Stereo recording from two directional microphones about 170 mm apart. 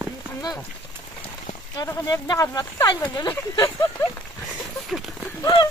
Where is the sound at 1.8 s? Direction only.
20° left (ahead or behind).